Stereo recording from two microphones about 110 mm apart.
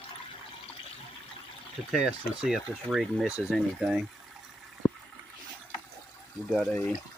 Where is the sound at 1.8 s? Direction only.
5° right (ahead or behind).